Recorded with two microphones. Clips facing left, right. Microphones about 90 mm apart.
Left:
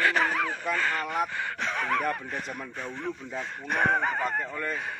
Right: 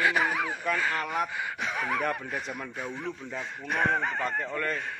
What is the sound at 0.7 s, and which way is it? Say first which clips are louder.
Speech: left 2 dB; 5° right (ahead or behind).